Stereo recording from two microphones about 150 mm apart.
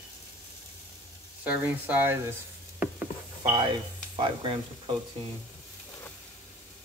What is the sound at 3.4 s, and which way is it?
Speech, 30° right (ahead or behind).